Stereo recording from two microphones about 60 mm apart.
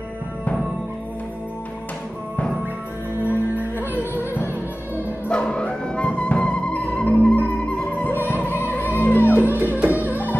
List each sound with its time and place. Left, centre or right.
3.3 s music: right
5.3 s music: centre; by 9.4 s left
9.4 s music: right